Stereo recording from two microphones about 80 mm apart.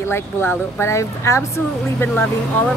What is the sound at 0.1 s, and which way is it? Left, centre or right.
A woman's voice, left.